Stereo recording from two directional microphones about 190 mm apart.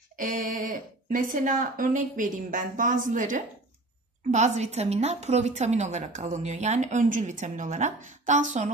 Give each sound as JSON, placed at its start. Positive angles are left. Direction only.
{"t": 0.2, "sound": "a woman's voice", "side_deg": -45}